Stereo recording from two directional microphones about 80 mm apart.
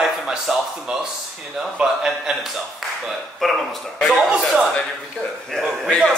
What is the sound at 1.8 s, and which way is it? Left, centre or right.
Speech, centre.